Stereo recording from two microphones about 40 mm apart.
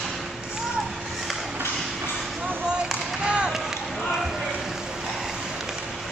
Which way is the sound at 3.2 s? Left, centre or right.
Right.